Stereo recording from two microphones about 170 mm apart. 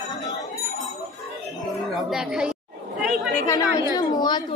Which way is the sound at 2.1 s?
5° right (ahead or behind).